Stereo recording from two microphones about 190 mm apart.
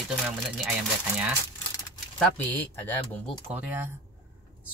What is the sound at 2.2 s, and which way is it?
Speech, 5° left (ahead or behind).